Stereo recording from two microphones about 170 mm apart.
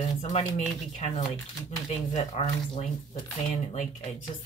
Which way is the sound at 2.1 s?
45° left (ahead or behind).